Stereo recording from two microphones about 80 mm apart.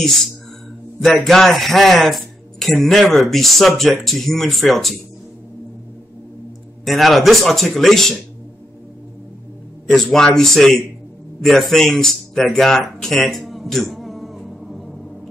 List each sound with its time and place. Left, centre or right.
1.2 s speech: centre
6.8 s speech: centre
9.8 s speech: centre